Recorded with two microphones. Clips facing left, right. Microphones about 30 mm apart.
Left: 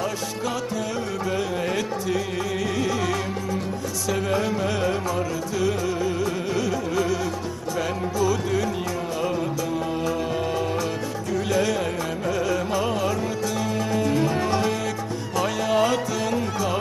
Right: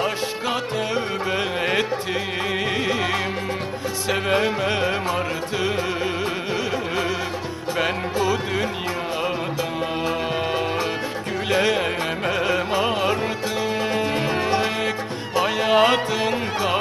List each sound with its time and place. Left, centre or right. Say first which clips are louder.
1.3 s music: right 4 dB; right
4.1 s music: right 3 dB; right
10.0 s music: right 2 dB; right